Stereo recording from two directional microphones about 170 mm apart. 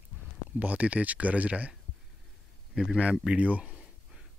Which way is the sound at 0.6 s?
10° right (ahead or behind).